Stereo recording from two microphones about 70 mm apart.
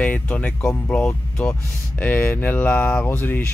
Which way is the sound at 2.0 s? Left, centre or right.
Left.